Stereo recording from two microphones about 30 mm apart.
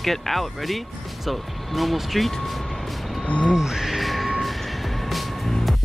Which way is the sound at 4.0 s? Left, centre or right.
Centre.